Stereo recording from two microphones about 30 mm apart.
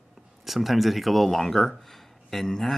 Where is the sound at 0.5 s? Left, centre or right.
Centre.